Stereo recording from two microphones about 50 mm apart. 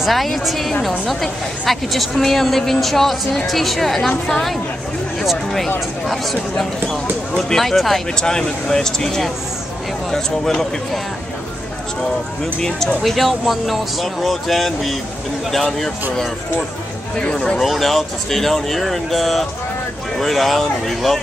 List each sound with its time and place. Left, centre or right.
0.0 s a woman's voice: centre
6.5 s a woman's voice: centre
12.5 s a woman's voice: centre
17.6 s a woman's voice: centre